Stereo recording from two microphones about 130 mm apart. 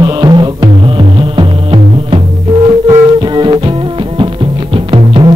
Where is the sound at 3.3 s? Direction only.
35° right (ahead or behind).